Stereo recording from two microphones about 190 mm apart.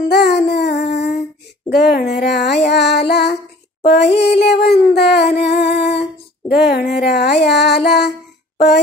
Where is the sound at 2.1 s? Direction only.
60° left (ahead or behind).